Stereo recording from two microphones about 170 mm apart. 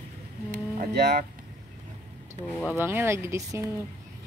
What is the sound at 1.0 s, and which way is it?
Speech, 75° right (ahead or behind).